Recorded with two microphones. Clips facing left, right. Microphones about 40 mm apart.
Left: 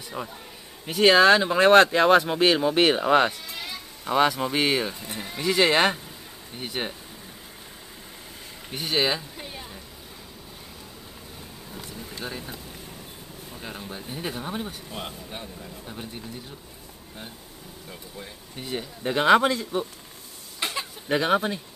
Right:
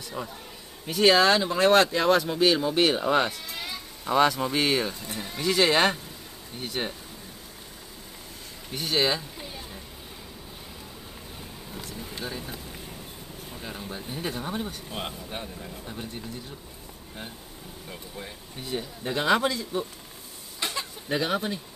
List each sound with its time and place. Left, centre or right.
0.2 s speech: centre
3.4 s speech: centre
8.6 s speech: centre
12.3 s speech: centre
13.6 s speech: centre
14.9 s speech: centre
15.9 s speech: centre
18.6 s speech: left
20.6 s a sound: centre
21.1 s speech: left